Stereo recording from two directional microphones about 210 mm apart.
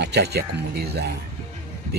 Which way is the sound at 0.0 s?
50° right (ahead or behind).